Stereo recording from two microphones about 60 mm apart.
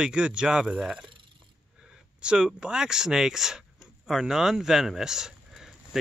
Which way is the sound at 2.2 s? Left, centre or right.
Centre.